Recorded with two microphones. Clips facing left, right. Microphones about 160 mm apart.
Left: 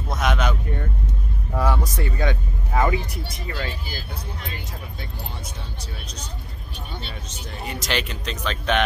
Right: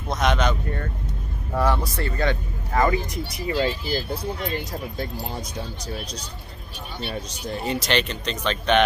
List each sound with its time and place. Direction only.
0.1 s a sound: 5° left (ahead or behind)
1.5 s speech: 10° left (ahead or behind)
3.4 s speech: 20° right (ahead or behind)
4.5 s speech: 40° right (ahead or behind)
7.2 s speech: 35° right (ahead or behind)
7.8 s speech: 5° left (ahead or behind)